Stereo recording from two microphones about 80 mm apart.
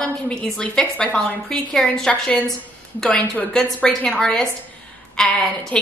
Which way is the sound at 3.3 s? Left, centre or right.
Centre.